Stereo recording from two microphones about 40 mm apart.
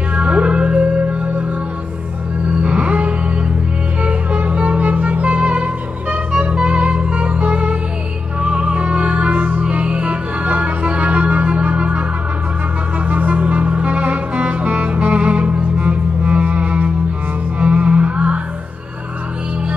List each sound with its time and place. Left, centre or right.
0.1 s music: right
2.6 s music: right
13.1 s music: right